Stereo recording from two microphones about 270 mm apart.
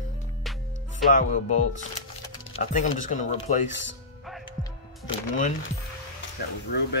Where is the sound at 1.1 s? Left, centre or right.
Left.